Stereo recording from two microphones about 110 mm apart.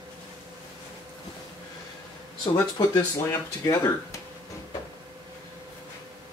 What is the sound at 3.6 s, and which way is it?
Speech, 30° left (ahead or behind).